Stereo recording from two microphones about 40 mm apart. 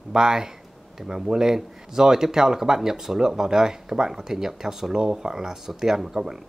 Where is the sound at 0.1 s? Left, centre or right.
Centre.